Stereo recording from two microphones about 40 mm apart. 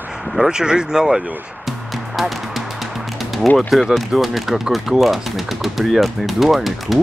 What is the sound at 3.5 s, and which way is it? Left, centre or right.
Speech, centre.